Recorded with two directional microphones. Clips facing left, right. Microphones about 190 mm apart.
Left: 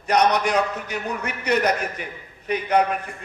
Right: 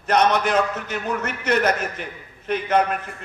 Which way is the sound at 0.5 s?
15° left (ahead or behind).